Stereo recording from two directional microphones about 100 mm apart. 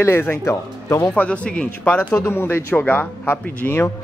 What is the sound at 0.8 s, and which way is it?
Speech, 35° left (ahead or behind).